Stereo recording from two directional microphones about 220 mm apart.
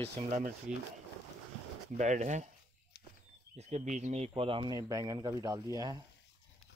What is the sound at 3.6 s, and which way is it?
Speech, 30° right (ahead or behind).